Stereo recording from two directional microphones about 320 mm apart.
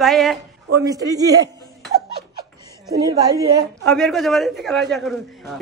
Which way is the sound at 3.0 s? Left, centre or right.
Centre.